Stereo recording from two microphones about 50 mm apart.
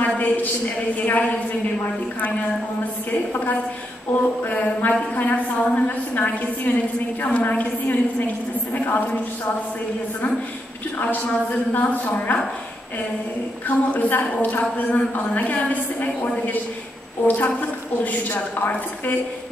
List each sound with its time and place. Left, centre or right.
0.0 s a woman's voice: left
3.1 s a woman's voice: left
11.0 s a woman's voice: left
13.7 s a woman's voice: left
17.3 s a woman's voice: left